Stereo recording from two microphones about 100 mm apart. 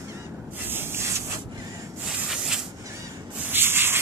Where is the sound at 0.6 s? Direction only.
20° right (ahead or behind).